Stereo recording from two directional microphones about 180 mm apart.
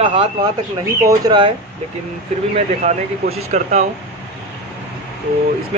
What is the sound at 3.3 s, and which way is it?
Speech, 40° right (ahead or behind).